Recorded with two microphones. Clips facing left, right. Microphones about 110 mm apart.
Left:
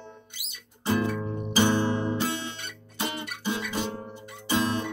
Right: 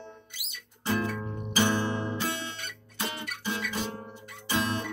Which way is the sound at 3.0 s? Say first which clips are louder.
Left 3 dB; 20° left (ahead or behind).